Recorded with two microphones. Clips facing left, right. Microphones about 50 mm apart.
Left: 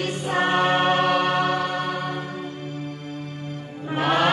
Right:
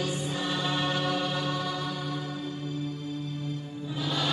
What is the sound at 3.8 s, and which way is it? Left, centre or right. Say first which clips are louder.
Mantra: left 11 dB; left.